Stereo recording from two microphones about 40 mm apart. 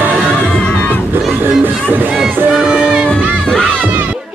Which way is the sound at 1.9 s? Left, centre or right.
Right.